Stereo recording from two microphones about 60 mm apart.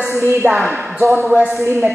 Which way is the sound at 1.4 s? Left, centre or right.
Right.